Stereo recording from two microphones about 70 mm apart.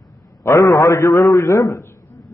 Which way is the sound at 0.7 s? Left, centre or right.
Left.